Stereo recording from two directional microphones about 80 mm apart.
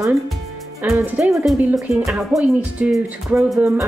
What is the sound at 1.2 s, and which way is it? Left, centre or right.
Speech, centre.